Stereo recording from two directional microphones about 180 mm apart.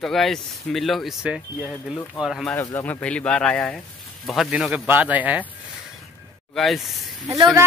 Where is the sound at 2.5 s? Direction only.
15° left (ahead or behind); by 5.5 s 10° right (ahead or behind).